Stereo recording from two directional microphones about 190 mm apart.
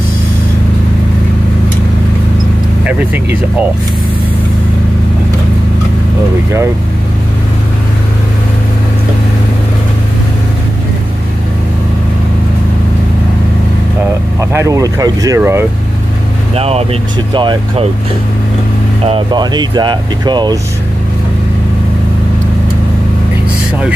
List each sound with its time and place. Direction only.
2.8 s speech: 5° right (ahead or behind)
14.4 s speech: 15° right (ahead or behind)
16.5 s speech: 35° right (ahead or behind)
19.0 s speech: 25° right (ahead or behind)